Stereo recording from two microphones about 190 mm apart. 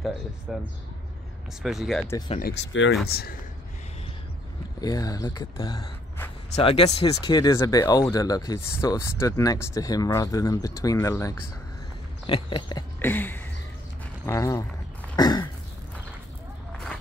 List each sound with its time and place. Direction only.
0.5 s speech: 5° right (ahead or behind)
2.0 s speech: 20° left (ahead or behind)
2.7 s speech: 85° left
3.1 s speech: 55° left (ahead or behind)
4.7 s speech: 20° left (ahead or behind)
13.0 s a sound: 10° left (ahead or behind)
14.2 s speech: 15° left (ahead or behind)